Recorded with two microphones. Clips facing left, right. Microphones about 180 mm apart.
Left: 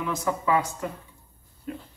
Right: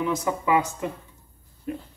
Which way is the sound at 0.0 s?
20° right (ahead or behind).